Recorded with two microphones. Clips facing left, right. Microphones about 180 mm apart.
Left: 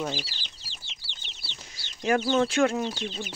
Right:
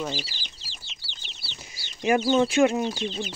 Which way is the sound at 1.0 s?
5° right (ahead or behind).